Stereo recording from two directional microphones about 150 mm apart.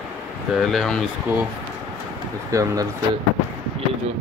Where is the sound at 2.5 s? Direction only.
20° right (ahead or behind).